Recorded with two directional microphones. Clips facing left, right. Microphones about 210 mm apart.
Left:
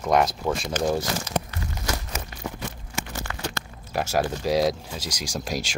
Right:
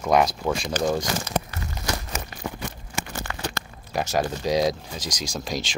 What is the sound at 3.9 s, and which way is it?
Speech, 5° left (ahead or behind).